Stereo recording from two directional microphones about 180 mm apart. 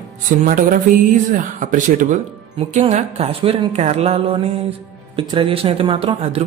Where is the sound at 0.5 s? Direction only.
50° right (ahead or behind).